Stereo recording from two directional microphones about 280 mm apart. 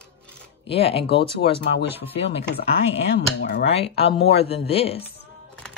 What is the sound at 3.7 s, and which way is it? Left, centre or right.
Speech, left.